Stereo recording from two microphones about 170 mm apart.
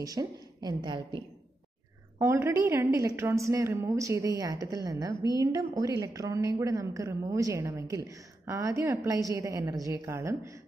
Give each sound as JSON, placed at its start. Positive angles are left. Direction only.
{"t": 0.0, "sound": "a woman's voice", "side_deg": -20}
{"t": 2.1, "sound": "a woman's voice", "side_deg": -15}